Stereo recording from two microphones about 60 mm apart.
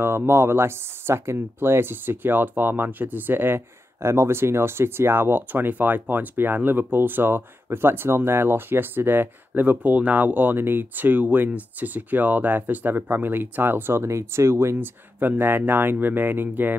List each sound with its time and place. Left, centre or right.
0.3 s speech: right
15.1 s speech: right